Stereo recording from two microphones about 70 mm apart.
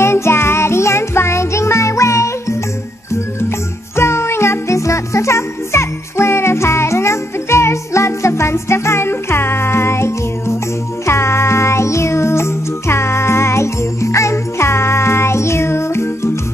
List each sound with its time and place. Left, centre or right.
0.0 s music: left
3.9 s music: left